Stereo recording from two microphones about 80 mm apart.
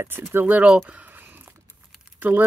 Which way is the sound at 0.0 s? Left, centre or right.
Right.